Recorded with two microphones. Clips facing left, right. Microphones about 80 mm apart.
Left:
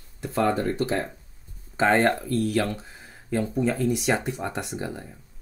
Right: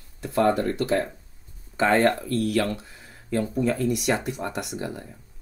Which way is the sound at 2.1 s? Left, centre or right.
Centre.